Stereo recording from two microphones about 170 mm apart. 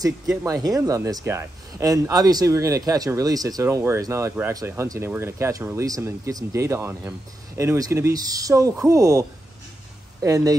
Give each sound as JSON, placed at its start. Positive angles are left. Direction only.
{"t": 0.5, "sound": "speech", "side_deg": -20}
{"t": 10.2, "sound": "speech", "side_deg": -20}